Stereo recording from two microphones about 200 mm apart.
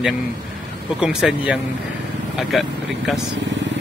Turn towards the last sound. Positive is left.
turn(degrees=0)  # may be behind; listen again after turning